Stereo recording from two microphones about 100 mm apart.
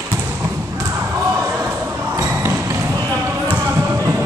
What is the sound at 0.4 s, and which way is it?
Basketball bounce, 30° right (ahead or behind).